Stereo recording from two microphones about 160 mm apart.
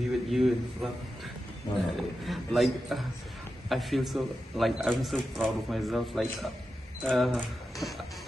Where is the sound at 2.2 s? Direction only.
Centre (ahead or behind).